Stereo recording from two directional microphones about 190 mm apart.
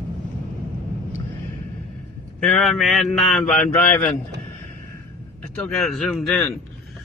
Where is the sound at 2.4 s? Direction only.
Centre (ahead or behind).